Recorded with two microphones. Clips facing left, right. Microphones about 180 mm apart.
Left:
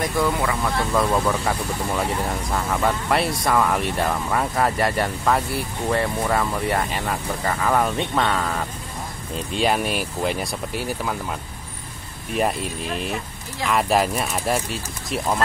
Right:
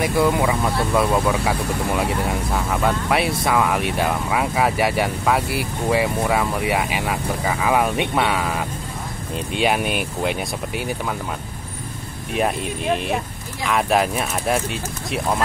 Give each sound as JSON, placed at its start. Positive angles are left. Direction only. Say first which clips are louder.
{"t": 0.0, "sound": "speech", "louder": "right 4 dB", "side_deg": -15}
{"t": 13.7, "sound": "speech", "louder": "right 1 dB", "side_deg": 0}